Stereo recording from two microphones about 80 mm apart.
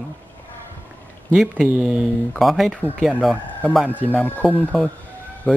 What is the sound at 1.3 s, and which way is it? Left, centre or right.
Speech, centre.